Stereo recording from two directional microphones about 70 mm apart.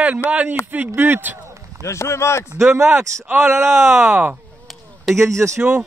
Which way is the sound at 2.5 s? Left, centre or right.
Right.